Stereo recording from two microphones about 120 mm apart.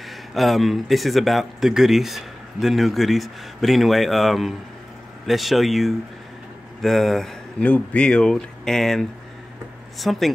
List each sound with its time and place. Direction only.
0.3 s speech: centre (ahead or behind)